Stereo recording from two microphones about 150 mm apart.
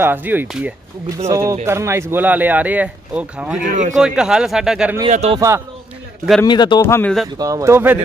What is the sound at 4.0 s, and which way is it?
Speech, 5° right (ahead or behind).